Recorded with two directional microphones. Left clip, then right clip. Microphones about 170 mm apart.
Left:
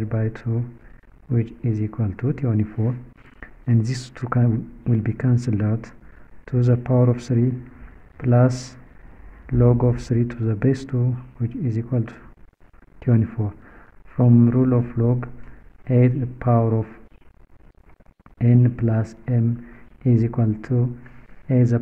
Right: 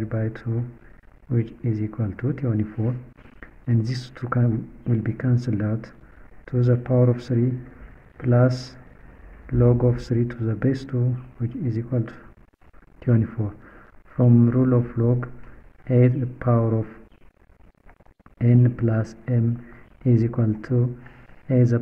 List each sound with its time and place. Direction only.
0.0 s speech: 20° left (ahead or behind)
13.0 s a sound: 15° left (ahead or behind)
14.7 s speech: 15° left (ahead or behind)
18.4 s speech: 20° left (ahead or behind)